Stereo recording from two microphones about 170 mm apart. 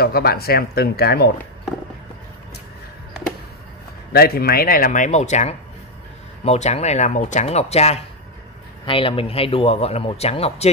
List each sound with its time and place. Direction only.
0.0 s speech: 65° left (ahead or behind)
4.1 s speech: 65° left (ahead or behind); by 10.7 s 35° left (ahead or behind)